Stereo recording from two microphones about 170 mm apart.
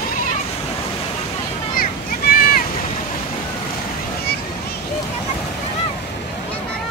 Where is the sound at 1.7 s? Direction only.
55° left (ahead or behind).